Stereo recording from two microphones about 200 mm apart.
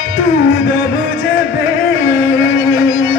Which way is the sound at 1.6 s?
65° left (ahead or behind).